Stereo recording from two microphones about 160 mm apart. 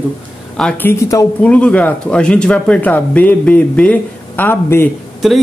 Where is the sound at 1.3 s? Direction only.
10° left (ahead or behind).